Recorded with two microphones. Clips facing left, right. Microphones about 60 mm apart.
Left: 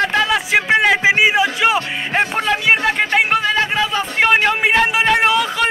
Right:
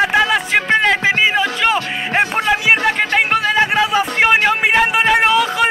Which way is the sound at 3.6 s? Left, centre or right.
Centre.